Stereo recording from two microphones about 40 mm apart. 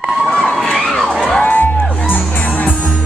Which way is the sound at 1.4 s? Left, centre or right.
Left.